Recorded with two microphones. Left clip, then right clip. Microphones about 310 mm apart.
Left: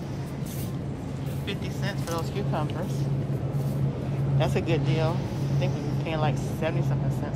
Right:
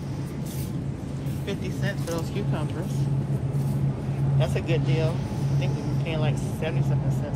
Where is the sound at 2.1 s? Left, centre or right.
Centre.